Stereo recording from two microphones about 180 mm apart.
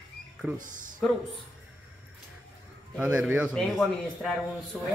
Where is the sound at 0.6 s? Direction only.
45° right (ahead or behind).